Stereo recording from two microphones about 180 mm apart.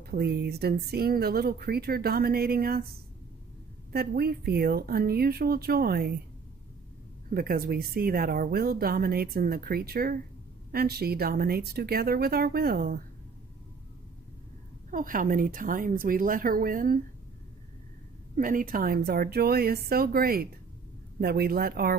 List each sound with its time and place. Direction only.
0.0 s speech: 60° right (ahead or behind)
7.2 s speech: 55° right (ahead or behind)
14.9 s speech: 50° right (ahead or behind)
18.3 s speech: 50° right (ahead or behind)